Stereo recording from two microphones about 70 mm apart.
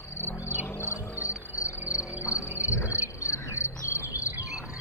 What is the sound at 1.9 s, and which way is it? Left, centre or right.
Cricket, left.